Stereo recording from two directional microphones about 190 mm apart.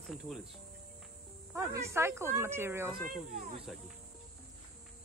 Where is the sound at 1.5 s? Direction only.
15° right (ahead or behind).